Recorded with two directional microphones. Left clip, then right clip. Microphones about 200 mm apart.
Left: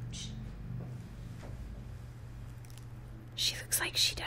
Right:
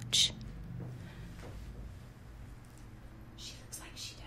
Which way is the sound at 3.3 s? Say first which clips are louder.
Left 16 dB; 45° left (ahead or behind).